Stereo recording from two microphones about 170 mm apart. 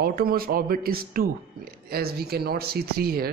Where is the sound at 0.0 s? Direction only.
60° right (ahead or behind).